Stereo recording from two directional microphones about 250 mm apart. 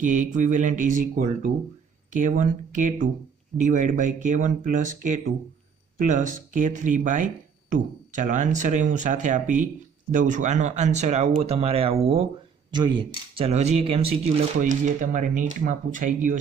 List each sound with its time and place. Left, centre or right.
0.0 s speech: right